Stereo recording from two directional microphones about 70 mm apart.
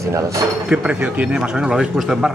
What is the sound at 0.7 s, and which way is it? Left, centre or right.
Speech, centre.